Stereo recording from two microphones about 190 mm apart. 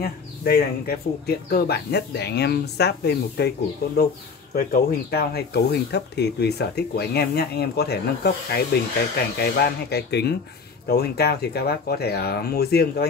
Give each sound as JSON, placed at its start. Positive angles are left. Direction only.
{"t": 0.0, "sound": "speech", "side_deg": 55}